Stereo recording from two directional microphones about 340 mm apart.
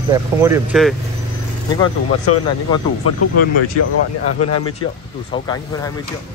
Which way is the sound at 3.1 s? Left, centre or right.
Left.